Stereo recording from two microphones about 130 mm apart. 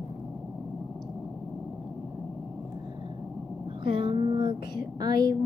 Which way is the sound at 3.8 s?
40° right (ahead or behind).